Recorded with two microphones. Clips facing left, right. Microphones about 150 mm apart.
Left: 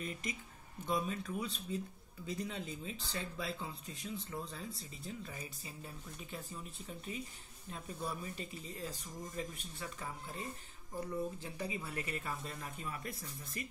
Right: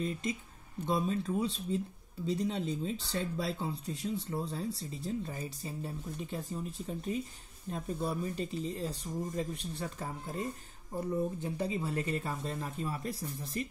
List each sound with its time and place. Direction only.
0.0 s speech: 25° right (ahead or behind)
11.4 s speech: 30° right (ahead or behind)